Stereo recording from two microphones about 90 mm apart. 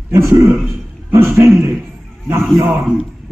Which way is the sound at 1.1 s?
30° right (ahead or behind).